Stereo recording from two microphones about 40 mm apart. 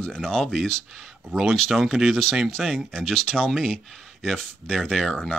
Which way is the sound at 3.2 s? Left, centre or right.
Centre.